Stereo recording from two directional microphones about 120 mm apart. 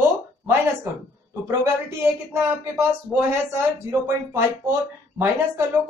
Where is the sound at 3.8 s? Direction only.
20° right (ahead or behind).